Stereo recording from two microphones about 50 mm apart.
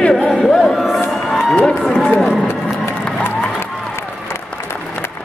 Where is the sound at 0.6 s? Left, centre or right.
Centre.